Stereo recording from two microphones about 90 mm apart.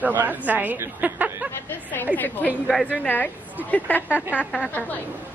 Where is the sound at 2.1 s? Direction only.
20° left (ahead or behind).